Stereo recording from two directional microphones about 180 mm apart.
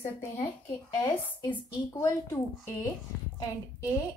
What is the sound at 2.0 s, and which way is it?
Speech, 15° left (ahead or behind).